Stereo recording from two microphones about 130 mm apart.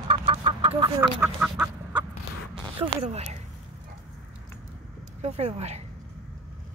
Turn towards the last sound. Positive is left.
turn(degrees=-55)  # may be behind; listen again after turning